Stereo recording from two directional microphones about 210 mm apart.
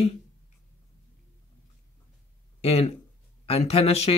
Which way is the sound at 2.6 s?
30° left (ahead or behind).